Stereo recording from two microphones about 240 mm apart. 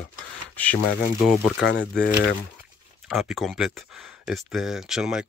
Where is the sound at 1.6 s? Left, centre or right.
Left.